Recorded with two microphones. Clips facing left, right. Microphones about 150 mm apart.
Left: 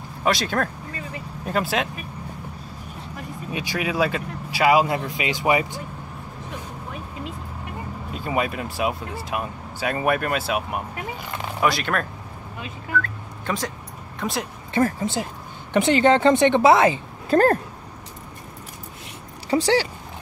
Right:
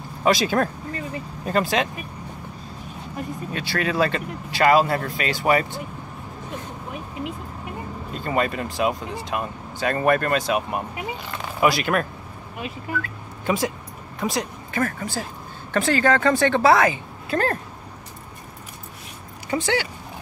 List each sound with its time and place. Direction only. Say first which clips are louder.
0.2 s speech: right 3 dB; centre (ahead or behind)
3.5 s speech: right 1 dB; 15° left (ahead or behind)
8.1 s speech: right 1 dB; 5° left (ahead or behind)
13.0 s music: right 3 dB; 10° right (ahead or behind)
14.2 s speech: right 2 dB; centre (ahead or behind)
14.7 s a woman's voice: left 7 dB; 30° left (ahead or behind)
17.3 s speech: left 6 dB; 40° left (ahead or behind)
19.5 s speech: left 4 dB; 35° left (ahead or behind)